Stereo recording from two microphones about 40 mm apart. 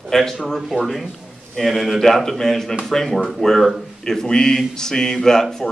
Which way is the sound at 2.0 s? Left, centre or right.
Centre.